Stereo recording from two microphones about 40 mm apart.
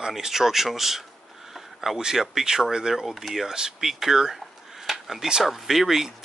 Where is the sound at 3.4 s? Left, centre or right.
Centre.